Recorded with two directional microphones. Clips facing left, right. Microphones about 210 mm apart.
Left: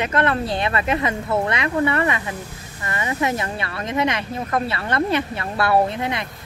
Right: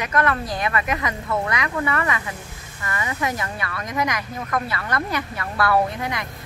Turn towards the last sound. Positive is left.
turn(degrees=25)  # may be behind; listen again after turning